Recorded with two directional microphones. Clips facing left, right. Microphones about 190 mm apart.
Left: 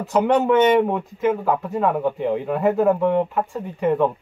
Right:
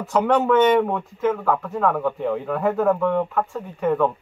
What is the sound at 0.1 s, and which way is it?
Speech, 20° left (ahead or behind).